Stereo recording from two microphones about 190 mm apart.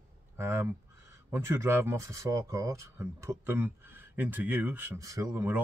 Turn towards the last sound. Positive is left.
turn(degrees=-15)  # may be behind; listen again after turning